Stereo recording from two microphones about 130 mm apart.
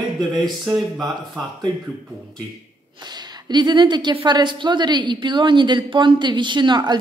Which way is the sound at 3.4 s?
35° right (ahead or behind).